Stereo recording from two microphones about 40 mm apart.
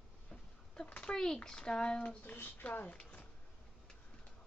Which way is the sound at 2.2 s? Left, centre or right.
Left.